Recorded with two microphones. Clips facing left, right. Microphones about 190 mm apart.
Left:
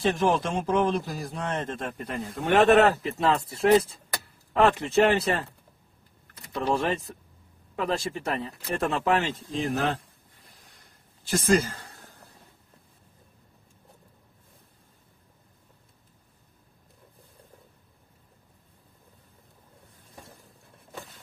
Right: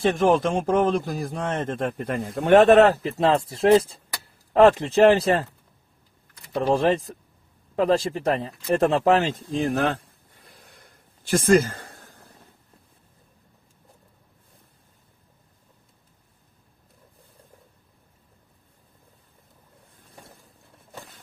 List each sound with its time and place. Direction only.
0.0 s a man's voice: 55° right (ahead or behind); by 3.5 s 35° right (ahead or behind)
4.6 s speech: 40° right (ahead or behind)
6.7 s speech: 40° right (ahead or behind); by 9.9 s 55° right (ahead or behind)
10.7 s a sound: 55° right (ahead or behind)